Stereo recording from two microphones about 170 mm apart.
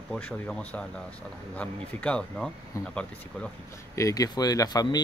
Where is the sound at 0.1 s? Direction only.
5° left (ahead or behind).